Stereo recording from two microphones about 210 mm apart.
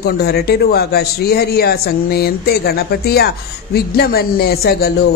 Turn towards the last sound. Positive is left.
turn(degrees=50)  # may be behind; listen again after turning